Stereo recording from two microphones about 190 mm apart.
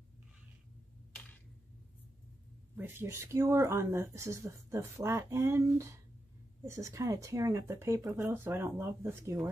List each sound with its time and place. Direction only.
2.7 s speech: 10° right (ahead or behind)